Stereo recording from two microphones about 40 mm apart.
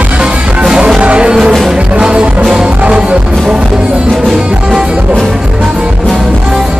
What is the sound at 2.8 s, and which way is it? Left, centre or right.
Music, right.